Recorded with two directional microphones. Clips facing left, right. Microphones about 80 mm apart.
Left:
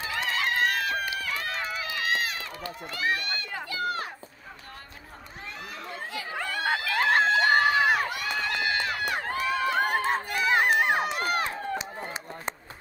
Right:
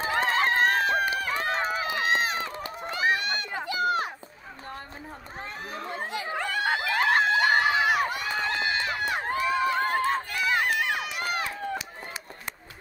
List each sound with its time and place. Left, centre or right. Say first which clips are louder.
0.0 s run: right 5 dB; right
5.7 s chatter: right 5 dB; right
6.3 s screaming: right 1 dB; centre
8.0 s run: right 2 dB; right
9.7 s run: even; left